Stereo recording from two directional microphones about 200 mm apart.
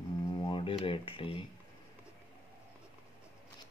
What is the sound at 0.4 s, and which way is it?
Speech, 25° left (ahead or behind).